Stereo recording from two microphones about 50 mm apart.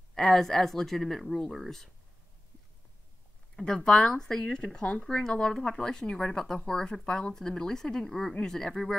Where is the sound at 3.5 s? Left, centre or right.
Centre.